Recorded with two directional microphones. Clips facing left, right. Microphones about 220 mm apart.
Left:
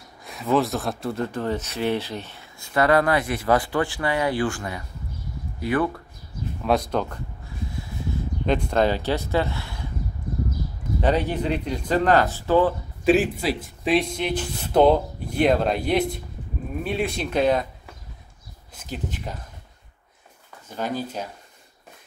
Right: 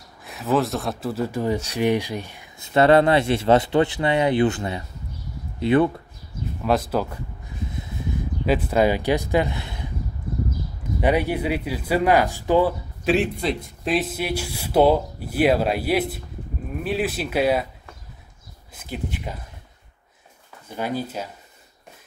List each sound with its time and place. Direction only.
0.2 s speech: centre (ahead or behind); by 5.9 s 25° right (ahead or behind)
6.6 s speech: 5° right (ahead or behind)
7.7 s a sound: 20° right (ahead or behind)
8.5 s speech: 5° right (ahead or behind)
11.0 s speech: 10° right (ahead or behind)
13.0 s speech: centre (ahead or behind)
19.0 s speech: 10° right (ahead or behind)
20.6 s speech: 10° right (ahead or behind)